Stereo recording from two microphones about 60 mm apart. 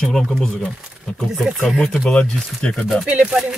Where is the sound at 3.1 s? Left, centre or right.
Right.